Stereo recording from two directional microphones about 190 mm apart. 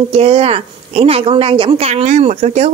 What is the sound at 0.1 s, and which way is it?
A woman's voice, 30° right (ahead or behind).